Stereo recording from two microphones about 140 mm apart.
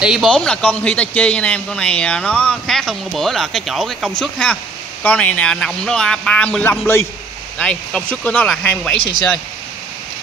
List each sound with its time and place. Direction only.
0.0 s speech: 5° right (ahead or behind)
0.3 s speech: 5° left (ahead or behind)
7.5 s speech: 5° left (ahead or behind)